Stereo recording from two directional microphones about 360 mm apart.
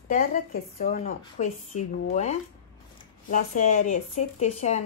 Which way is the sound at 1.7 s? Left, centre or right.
Left.